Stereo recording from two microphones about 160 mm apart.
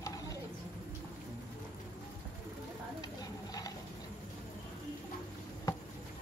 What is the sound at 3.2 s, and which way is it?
Bird, 25° left (ahead or behind).